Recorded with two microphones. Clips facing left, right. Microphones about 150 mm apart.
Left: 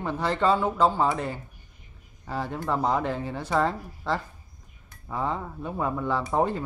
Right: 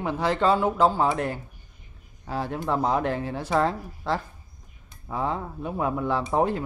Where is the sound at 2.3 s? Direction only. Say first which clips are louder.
Right 2 dB; 10° right (ahead or behind).